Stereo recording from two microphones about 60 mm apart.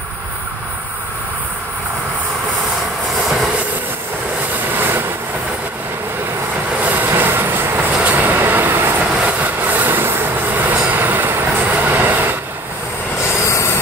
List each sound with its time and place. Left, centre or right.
4.7 s vehicle: right
6.8 s vehicle: right
7.9 s train: right
13.5 s vehicle: left